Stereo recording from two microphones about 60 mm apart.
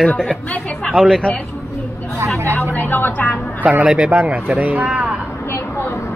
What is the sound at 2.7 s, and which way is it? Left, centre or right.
Speech, left.